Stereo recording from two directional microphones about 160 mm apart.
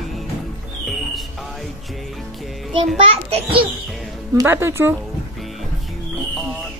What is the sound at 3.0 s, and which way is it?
Speech, 35° right (ahead or behind).